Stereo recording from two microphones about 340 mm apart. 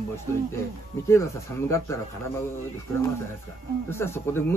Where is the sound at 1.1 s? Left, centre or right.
Centre.